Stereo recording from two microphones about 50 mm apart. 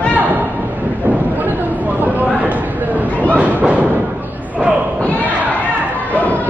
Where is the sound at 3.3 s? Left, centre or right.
Right.